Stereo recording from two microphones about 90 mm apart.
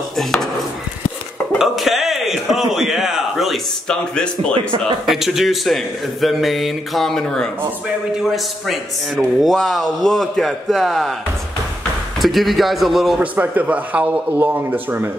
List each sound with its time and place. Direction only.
0.1 s speech: 5° left (ahead or behind)
1.6 s a man's voice: 5° right (ahead or behind)
4.6 s speech: 75° right (ahead or behind)
5.0 s a man's voice: 5° right (ahead or behind)
8.2 s a man's voice: 5° right (ahead or behind)
12.2 s a man's voice: centre (ahead or behind)
13.2 s a man's voice: 15° right (ahead or behind)